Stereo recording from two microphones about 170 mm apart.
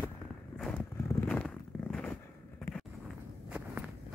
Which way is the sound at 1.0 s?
5° left (ahead or behind).